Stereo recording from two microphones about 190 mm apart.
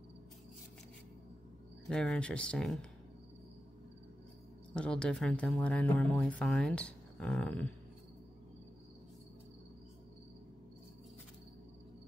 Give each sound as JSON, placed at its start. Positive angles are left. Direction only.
{"t": 1.9, "sound": "speech", "side_deg": 5}
{"t": 4.7, "sound": "speech", "side_deg": 5}